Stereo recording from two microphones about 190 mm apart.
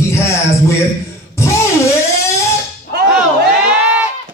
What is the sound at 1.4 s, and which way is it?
Music, 15° left (ahead or behind).